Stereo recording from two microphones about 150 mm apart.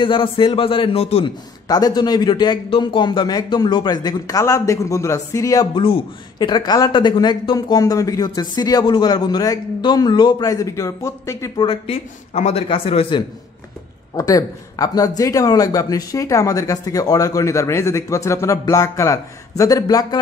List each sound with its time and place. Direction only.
0.0 s a man's voice: 35° left (ahead or behind)
1.7 s speech: 25° left (ahead or behind)
5.8 s speech: 35° left (ahead or behind); by 11.6 s 20° left (ahead or behind)
11.6 s a man's voice: 35° left (ahead or behind)
14.1 s speech: 25° left (ahead or behind)